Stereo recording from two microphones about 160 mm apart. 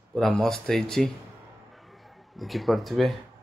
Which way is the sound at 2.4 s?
Centre (ahead or behind).